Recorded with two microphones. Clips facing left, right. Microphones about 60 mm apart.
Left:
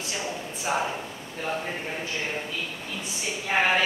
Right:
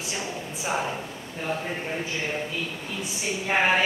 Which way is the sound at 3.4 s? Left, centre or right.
Right.